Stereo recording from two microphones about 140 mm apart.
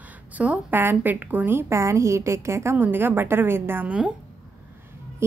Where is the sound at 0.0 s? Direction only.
10° right (ahead or behind).